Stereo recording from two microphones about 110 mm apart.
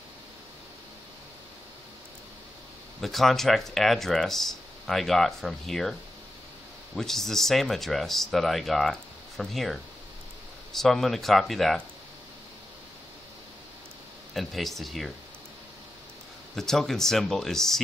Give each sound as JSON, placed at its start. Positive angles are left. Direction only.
{"t": 3.0, "sound": "speech", "side_deg": 0}
{"t": 7.0, "sound": "speech", "side_deg": 5}
{"t": 14.3, "sound": "speech", "side_deg": 0}
{"t": 16.5, "sound": "speech", "side_deg": 5}